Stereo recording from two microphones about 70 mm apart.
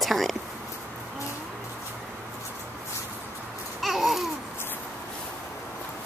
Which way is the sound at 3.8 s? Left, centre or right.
Centre.